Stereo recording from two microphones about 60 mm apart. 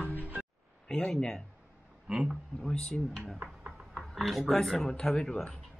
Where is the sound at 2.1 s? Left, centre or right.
Centre.